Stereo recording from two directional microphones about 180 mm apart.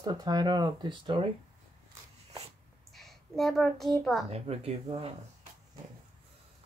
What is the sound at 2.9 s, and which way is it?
A woman's voice, centre (ahead or behind).